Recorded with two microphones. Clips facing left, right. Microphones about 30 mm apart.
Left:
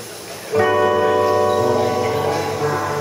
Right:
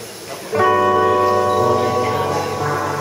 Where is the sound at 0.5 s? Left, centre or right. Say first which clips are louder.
Right 1 dB; centre.